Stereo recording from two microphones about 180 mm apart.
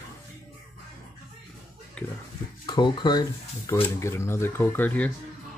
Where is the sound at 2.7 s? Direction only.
25° left (ahead or behind).